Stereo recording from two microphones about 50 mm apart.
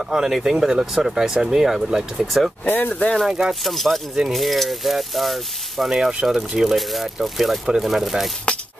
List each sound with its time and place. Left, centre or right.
0.1 s speech: centre
2.6 s speech: left
3.3 s speech: centre
3.6 s speech: centre
5.9 s speech: centre